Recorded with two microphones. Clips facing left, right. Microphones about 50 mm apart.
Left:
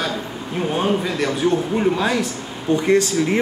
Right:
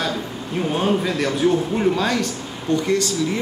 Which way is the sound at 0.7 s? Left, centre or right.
Centre.